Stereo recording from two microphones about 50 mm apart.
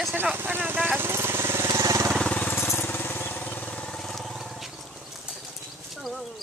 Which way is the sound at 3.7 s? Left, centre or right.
Centre.